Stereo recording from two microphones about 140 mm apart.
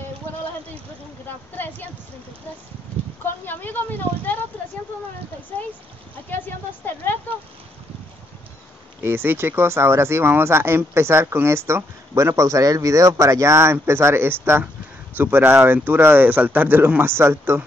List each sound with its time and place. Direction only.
1.6 s a sound: 15° left (ahead or behind)
3.3 s speech: 15° left (ahead or behind)
9.0 s speech: 15° right (ahead or behind)